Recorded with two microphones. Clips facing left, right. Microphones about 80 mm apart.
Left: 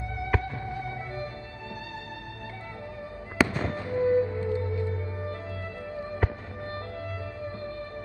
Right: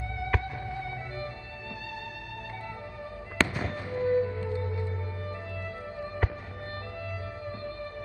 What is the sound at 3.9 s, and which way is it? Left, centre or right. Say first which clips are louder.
Music: left 3 dB; left.